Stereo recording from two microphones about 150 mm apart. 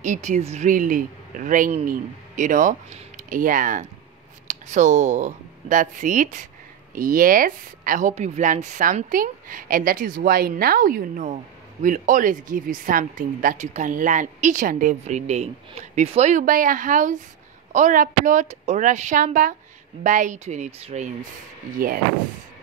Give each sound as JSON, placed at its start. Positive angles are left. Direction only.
{"t": 0.0, "sound": "speech", "side_deg": -55}
{"t": 7.0, "sound": "speech", "side_deg": -65}
{"t": 10.2, "sound": "speech", "side_deg": -85}
{"t": 21.8, "sound": "speech", "side_deg": -75}